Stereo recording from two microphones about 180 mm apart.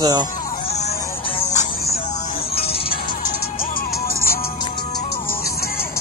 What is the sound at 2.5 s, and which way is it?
Music, 30° left (ahead or behind).